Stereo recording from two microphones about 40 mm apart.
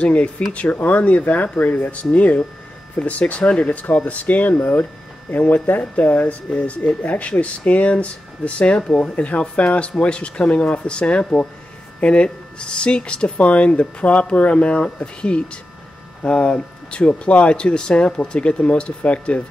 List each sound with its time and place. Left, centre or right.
0.0 s speech: left
3.7 s speech: left
5.3 s speech: left